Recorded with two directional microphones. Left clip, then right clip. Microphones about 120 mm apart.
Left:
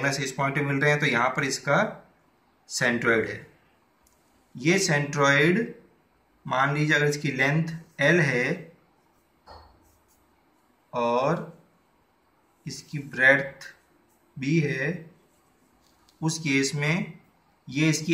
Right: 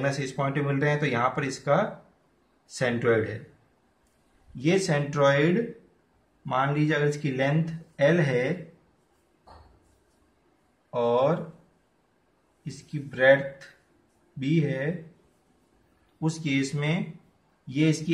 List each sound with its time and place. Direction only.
0.0 s speech: 90° right
4.6 s speech: 70° right (ahead or behind)
10.9 s speech: 65° right (ahead or behind)
12.6 s speech: 60° right (ahead or behind)
14.4 s speech: 60° right (ahead or behind)
16.3 s speech: 70° right (ahead or behind)